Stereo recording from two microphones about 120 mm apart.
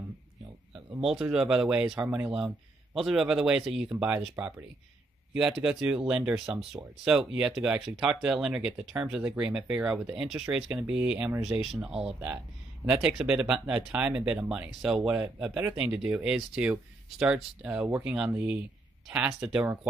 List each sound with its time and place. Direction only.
1.0 s speech: 5° right (ahead or behind)
2.3 s speech: 5° right (ahead or behind)
5.3 s speech: 5° right (ahead or behind)